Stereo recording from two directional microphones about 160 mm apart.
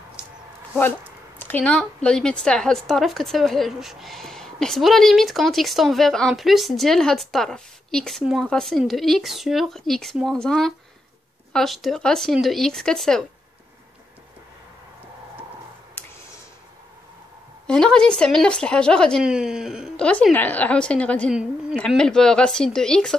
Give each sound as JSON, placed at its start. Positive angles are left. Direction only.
{"t": 1.4, "sound": "a woman's voice", "side_deg": 10}
{"t": 17.6, "sound": "a woman's voice", "side_deg": 5}
{"t": 20.1, "sound": "a woman's voice", "side_deg": 10}
{"t": 21.3, "sound": "a woman's voice", "side_deg": -5}